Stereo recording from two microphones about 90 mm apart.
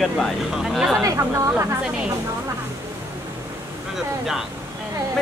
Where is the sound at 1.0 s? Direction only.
35° right (ahead or behind).